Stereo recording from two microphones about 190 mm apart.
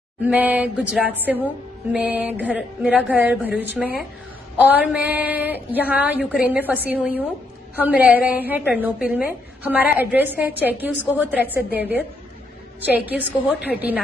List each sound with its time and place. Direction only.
0.2 s a woman's voice: 10° right (ahead or behind)